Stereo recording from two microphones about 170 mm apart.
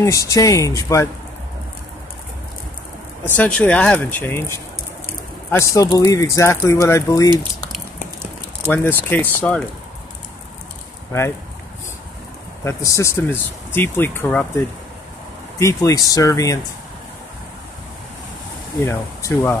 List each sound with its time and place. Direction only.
0.0 s speech: 20° left (ahead or behind)
3.3 s speech: 5° left (ahead or behind)
8.6 s speech: 10° left (ahead or behind)
12.6 s speech: 20° left (ahead or behind)
15.6 s speech: 20° left (ahead or behind)
18.9 s speech: 15° left (ahead or behind)